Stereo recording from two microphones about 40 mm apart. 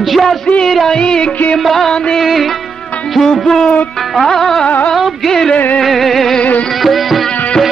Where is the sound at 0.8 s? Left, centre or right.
Centre.